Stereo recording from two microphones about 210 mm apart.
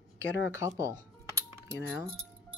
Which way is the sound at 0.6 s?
15° right (ahead or behind).